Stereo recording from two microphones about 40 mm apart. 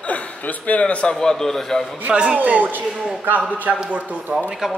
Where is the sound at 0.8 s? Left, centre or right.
Left.